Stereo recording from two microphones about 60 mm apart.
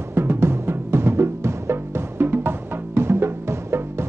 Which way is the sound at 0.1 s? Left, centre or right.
Right.